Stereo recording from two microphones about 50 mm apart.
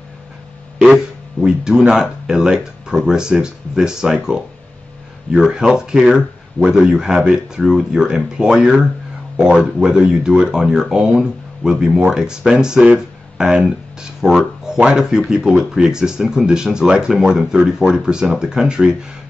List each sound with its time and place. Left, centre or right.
1.4 s speech: centre
5.4 s speech: centre
8.5 s speech: right
9.6 s speech: centre